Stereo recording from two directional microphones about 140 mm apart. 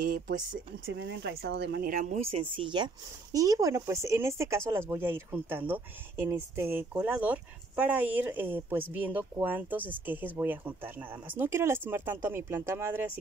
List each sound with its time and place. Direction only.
0.0 s speech: 80° right
1.4 s speech: 85° right; by 2.9 s 35° right (ahead or behind)
3.3 s speech: 25° right (ahead or behind)